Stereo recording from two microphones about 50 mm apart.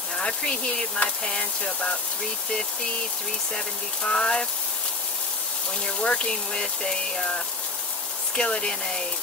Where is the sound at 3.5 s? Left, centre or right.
Centre.